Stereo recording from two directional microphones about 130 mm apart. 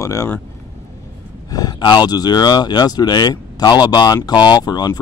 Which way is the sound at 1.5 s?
30° left (ahead or behind).